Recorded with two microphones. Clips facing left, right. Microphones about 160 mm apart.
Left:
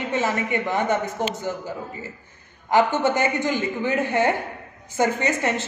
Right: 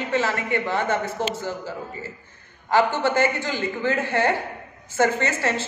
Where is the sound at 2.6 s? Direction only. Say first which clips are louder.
Left 1 dB; 20° left (ahead or behind).